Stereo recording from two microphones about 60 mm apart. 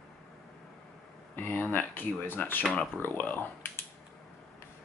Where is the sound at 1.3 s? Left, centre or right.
Left.